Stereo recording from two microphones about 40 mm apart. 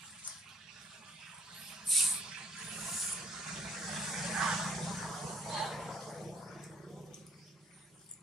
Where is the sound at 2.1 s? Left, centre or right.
Centre.